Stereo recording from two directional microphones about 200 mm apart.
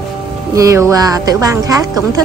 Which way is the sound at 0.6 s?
15° right (ahead or behind).